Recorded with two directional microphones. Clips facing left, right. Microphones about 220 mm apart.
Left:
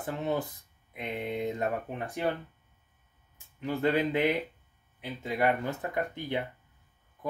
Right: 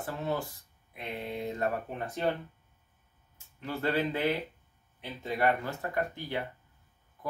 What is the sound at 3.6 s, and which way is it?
Speech, 15° left (ahead or behind).